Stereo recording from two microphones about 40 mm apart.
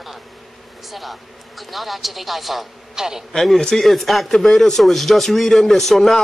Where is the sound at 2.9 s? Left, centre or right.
Centre.